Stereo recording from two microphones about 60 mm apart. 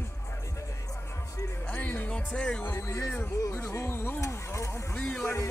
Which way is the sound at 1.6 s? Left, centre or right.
Left.